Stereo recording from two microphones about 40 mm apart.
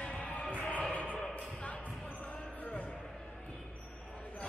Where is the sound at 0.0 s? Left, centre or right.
Left.